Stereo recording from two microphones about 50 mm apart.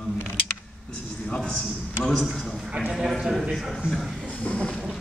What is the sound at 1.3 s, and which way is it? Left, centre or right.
Speech, centre.